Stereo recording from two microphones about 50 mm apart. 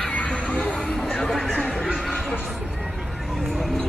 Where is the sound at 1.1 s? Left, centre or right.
Centre.